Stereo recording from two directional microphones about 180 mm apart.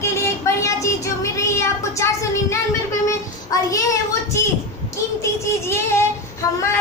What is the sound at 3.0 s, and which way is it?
Child singing, 20° left (ahead or behind).